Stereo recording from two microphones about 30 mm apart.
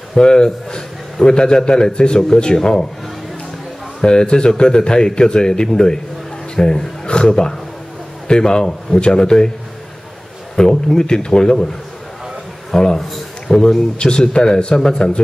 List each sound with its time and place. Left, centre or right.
0.1 s a man's voice: left
4.0 s a man's voice: left
10.5 s a man's voice: left
12.7 s a man's voice: centre
13.5 s a man's voice: centre
13.9 s a man's voice: left